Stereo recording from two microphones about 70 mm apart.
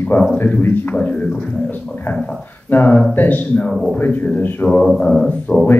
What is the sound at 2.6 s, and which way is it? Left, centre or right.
A man's voice, left.